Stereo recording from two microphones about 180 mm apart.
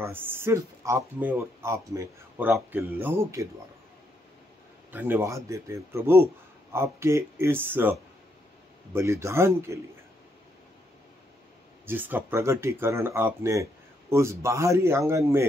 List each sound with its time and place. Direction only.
0.0 s speech: 10° right (ahead or behind)
4.9 s speech: 10° right (ahead or behind)
8.9 s speech: 15° right (ahead or behind)
11.8 s speech: 10° right (ahead or behind)